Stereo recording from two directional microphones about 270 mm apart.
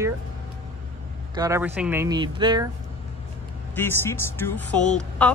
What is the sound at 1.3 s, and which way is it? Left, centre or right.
Speech, centre.